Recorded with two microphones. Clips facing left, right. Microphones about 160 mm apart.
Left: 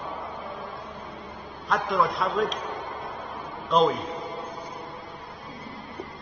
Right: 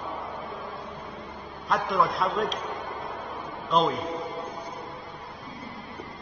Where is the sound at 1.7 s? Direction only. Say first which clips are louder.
Even; centre (ahead or behind).